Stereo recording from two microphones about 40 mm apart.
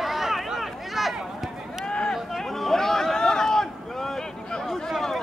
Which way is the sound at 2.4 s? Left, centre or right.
Centre.